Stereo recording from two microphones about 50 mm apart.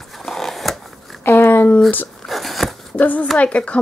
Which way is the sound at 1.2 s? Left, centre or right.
Left.